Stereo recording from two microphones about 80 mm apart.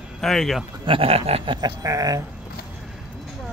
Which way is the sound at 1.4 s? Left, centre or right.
Right.